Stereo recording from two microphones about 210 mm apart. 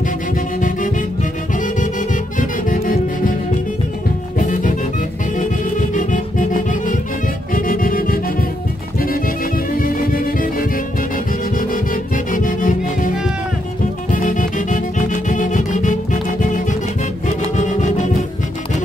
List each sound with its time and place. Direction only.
0.6 s music: 40° left (ahead or behind)
4.4 s music: 40° left (ahead or behind)
5.8 s music: 35° left (ahead or behind)
9.8 s music: 45° left (ahead or behind)
14.1 s music: 40° left (ahead or behind)
17.6 s music: 35° left (ahead or behind)